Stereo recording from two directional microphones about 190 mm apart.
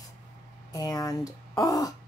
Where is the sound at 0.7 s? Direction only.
20° left (ahead or behind).